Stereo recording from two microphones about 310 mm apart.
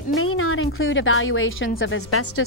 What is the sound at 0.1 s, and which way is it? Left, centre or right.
A woman's voice, left.